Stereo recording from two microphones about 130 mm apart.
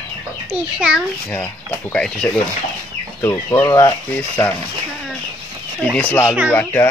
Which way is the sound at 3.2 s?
20° left (ahead or behind).